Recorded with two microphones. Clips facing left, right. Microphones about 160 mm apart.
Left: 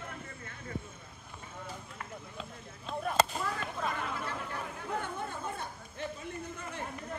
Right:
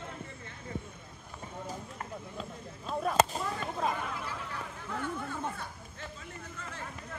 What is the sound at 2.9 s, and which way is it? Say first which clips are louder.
Chop: right 3 dB; 35° right (ahead or behind).